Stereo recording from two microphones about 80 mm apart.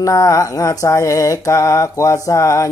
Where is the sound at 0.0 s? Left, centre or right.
Left.